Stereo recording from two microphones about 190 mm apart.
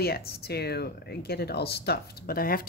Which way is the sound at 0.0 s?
55° left (ahead or behind).